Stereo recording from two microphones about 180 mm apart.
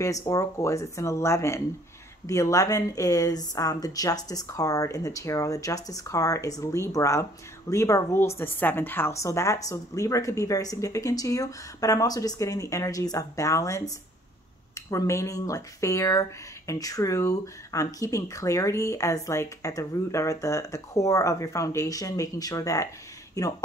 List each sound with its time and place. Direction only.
0.0 s a woman's voice: 20° left (ahead or behind)